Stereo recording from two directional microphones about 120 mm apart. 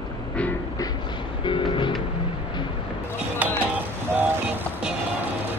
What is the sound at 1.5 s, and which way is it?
Music, 45° left (ahead or behind).